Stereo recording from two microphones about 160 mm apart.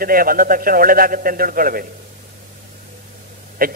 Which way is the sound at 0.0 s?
65° right (ahead or behind).